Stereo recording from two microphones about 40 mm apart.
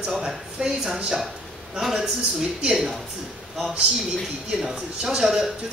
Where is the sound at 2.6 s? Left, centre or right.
Centre.